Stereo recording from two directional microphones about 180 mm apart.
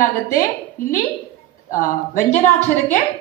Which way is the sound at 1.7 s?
45° left (ahead or behind).